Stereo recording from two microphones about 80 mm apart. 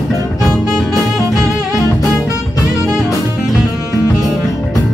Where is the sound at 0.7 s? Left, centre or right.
Centre.